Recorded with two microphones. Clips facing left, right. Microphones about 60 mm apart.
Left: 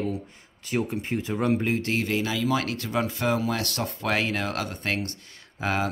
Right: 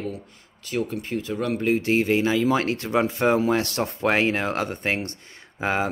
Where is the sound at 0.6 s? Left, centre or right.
Left.